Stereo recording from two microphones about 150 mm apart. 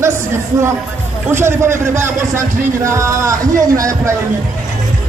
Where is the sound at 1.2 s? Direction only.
15° right (ahead or behind).